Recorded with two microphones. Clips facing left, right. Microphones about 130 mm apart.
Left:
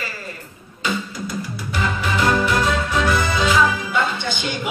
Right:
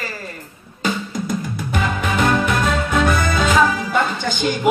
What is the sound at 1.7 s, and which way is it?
Music, 50° right (ahead or behind).